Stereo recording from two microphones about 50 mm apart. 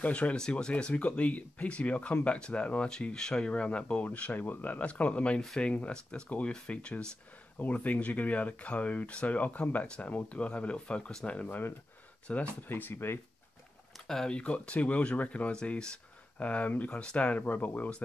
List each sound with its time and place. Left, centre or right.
0.0 s speech: left
11.4 s speech: left
12.3 s speech: left
12.6 s speech: left
14.0 s speech: centre
14.3 s speech: left